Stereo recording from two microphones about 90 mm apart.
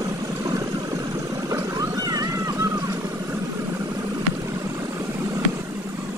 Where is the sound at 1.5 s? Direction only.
45° right (ahead or behind).